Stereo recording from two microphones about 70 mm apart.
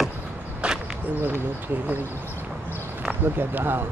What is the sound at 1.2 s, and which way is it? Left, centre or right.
Speech, right.